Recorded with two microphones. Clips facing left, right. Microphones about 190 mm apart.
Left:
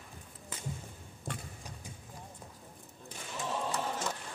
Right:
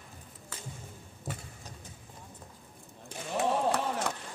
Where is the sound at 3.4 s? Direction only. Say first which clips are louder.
Right 7 dB; 65° right (ahead or behind).